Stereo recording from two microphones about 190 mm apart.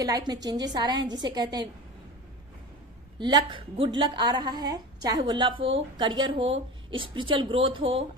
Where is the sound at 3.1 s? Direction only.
25° right (ahead or behind).